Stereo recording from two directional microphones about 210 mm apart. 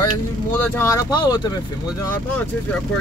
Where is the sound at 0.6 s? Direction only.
10° left (ahead or behind).